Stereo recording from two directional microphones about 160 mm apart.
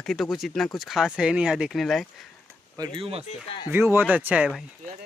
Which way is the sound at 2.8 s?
35° right (ahead or behind).